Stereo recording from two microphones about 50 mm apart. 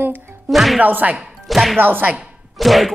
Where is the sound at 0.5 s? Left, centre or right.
Centre.